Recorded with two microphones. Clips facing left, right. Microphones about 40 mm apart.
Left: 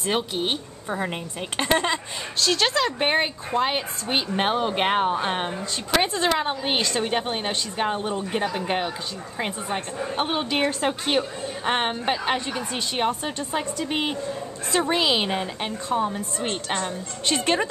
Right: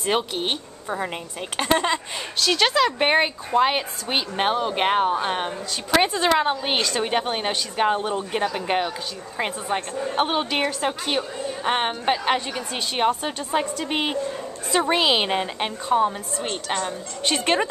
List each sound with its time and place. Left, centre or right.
0.0 s a woman's voice: centre
0.8 s a woman's voice: centre
6.1 s a woman's voice: centre
10.2 s a woman's voice: centre
10.6 s a woman's voice: centre
12.1 s a woman's voice: centre
16.4 s a woman's voice: centre
17.3 s a woman's voice: centre